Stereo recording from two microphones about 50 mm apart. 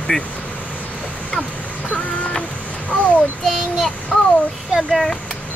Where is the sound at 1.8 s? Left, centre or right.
Left.